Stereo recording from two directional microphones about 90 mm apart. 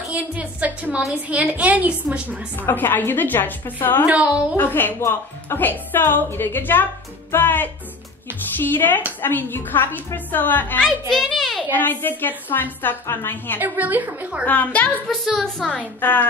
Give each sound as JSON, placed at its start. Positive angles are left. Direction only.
{"t": 0.1, "sound": "a woman's voice", "side_deg": -15}
{"t": 2.5, "sound": "a woman's voice", "side_deg": 25}
{"t": 4.0, "sound": "a woman's voice", "side_deg": -15}
{"t": 4.6, "sound": "a woman's voice", "side_deg": 20}
{"t": 10.8, "sound": "a child's voice", "side_deg": 5}
{"t": 11.7, "sound": "a woman's voice", "side_deg": 20}
{"t": 13.6, "sound": "a woman's voice", "side_deg": -20}
{"t": 14.4, "sound": "a woman's voice", "side_deg": 20}
{"t": 15.0, "sound": "a woman's voice", "side_deg": 0}
{"t": 16.0, "sound": "a woman's voice", "side_deg": 20}